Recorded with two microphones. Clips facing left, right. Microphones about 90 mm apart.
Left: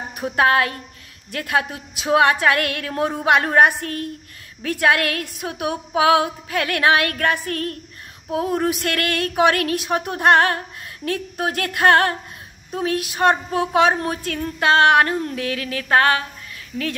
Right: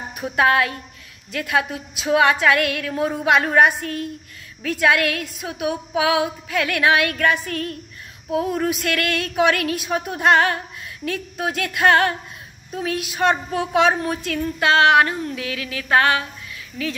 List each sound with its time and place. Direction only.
0.2 s a woman's voice: 40° left (ahead or behind)